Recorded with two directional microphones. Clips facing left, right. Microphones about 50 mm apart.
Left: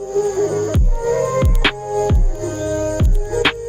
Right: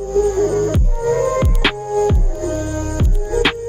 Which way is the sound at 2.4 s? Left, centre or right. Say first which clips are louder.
Left 1 dB; right.